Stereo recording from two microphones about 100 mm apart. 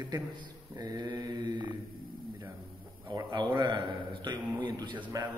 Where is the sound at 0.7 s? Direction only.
40° right (ahead or behind).